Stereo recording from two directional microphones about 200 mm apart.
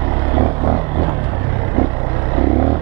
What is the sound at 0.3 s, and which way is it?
Vehicle, 20° right (ahead or behind).